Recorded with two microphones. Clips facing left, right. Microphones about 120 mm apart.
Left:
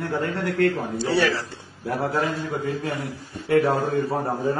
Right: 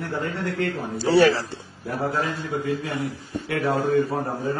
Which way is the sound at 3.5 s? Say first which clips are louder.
Left 4 dB; 45° left (ahead or behind).